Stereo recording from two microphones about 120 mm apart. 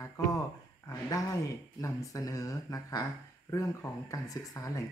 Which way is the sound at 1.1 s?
30° left (ahead or behind).